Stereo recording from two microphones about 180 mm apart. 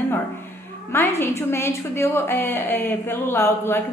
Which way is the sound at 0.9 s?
15° left (ahead or behind).